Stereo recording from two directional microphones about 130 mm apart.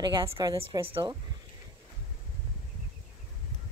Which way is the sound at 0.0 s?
35° right (ahead or behind).